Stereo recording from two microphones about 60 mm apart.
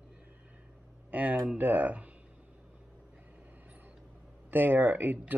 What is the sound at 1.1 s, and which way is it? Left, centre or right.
Speech, right.